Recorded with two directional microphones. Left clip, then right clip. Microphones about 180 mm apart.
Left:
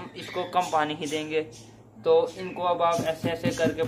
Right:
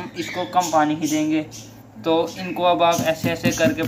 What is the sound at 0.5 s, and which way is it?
Speech, 25° left (ahead or behind).